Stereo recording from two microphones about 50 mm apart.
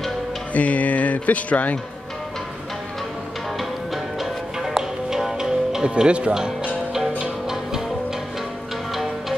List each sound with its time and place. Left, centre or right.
0.5 s speech: left
3.5 s music: centre
8.9 s music: centre